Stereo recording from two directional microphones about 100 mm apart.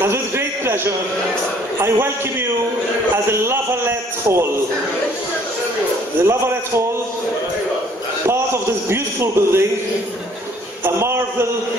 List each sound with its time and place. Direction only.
0.0 s a sound: 25° right (ahead or behind)
1.8 s a man's voice: 25° right (ahead or behind)
3.3 s a man's voice: 25° right (ahead or behind)
6.2 s a man's voice: 25° right (ahead or behind)
8.8 s a man's voice: 25° right (ahead or behind)
10.8 s a sound: 25° right (ahead or behind)